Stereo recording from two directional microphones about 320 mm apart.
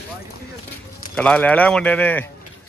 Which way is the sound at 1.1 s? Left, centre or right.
Centre.